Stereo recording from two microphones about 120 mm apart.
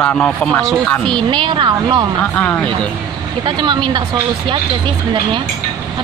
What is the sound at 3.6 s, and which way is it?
Speech, 40° right (ahead or behind).